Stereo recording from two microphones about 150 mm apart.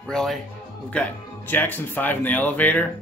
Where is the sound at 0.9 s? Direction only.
10° left (ahead or behind).